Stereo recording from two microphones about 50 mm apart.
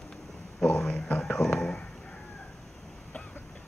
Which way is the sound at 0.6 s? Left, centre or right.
Centre.